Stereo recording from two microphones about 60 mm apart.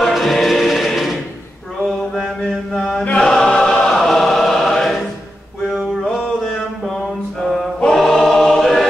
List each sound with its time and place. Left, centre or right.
0.0 s music: centre
1.8 s chant: centre
7.8 s choir: centre